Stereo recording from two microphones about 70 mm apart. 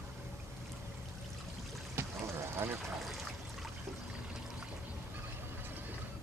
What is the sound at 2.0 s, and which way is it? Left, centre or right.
Boat, right.